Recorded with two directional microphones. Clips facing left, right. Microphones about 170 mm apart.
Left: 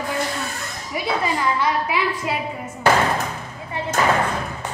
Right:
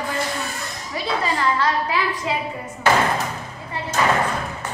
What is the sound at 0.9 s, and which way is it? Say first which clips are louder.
A woman's voice: left 1 dB; 15° left (ahead or behind).